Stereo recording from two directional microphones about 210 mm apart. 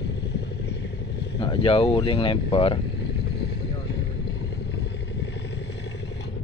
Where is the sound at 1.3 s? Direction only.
25° left (ahead or behind).